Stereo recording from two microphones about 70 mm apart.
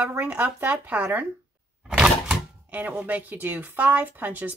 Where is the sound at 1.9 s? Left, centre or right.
Centre.